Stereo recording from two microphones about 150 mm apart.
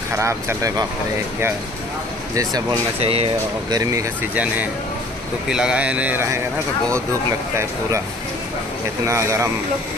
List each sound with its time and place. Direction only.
0.1 s speech: 20° right (ahead or behind)
3.0 s speech: 40° right (ahead or behind)
3.7 s speech: 20° right (ahead or behind)
5.5 s speech: 5° right (ahead or behind)
9.0 s speech: 20° right (ahead or behind)